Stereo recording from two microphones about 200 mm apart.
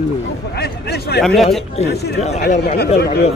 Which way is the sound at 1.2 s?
Centre (ahead or behind).